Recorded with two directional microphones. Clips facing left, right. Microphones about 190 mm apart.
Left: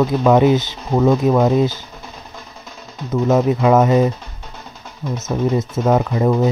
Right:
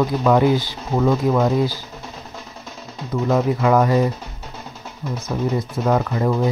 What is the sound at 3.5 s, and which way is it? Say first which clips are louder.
Speech: left 3 dB; 20° left (ahead or behind).